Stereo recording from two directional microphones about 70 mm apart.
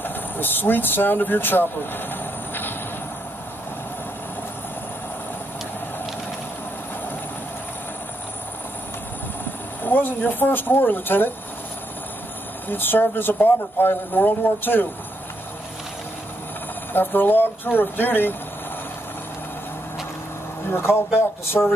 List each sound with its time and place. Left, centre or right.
0.0 s speech: left
9.8 s speech: left
12.6 s speech: left
16.9 s speech: left
20.7 s speech: left